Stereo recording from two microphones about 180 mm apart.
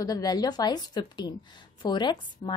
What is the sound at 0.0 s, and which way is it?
A woman's voice, 20° left (ahead or behind).